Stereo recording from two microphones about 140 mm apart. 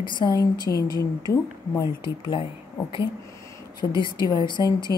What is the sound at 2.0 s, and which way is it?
Speech, 35° left (ahead or behind).